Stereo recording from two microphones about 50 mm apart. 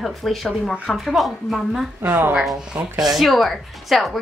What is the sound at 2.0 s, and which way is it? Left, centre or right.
Speech, right.